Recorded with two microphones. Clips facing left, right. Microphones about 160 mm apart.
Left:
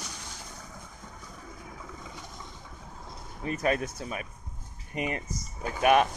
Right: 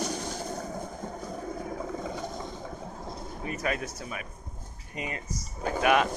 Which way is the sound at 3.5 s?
30° left (ahead or behind).